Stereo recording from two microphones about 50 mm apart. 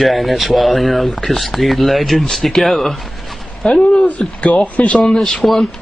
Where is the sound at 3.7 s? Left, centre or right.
Centre.